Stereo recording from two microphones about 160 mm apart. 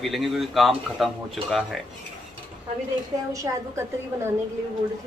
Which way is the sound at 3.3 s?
20° right (ahead or behind).